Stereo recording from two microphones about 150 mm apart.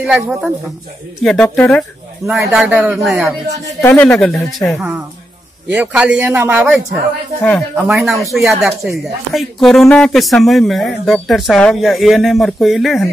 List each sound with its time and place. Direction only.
0.0 s speech: 10° right (ahead or behind)
1.2 s speech: 5° left (ahead or behind)
2.5 s speech: 5° right (ahead or behind)
3.8 s speech: 10° left (ahead or behind)
4.7 s speech: 10° right (ahead or behind)